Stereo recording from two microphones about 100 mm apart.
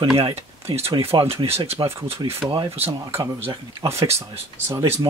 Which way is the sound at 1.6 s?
90° right.